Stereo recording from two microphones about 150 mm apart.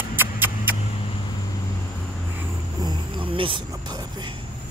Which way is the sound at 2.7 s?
30° right (ahead or behind).